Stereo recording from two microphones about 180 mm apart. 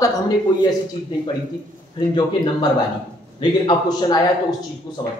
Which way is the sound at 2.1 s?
25° left (ahead or behind).